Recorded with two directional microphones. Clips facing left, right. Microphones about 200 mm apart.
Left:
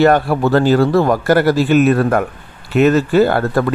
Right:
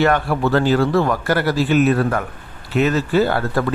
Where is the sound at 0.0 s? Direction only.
40° left (ahead or behind).